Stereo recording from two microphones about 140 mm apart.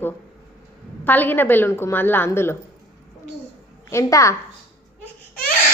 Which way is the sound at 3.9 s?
20° left (ahead or behind).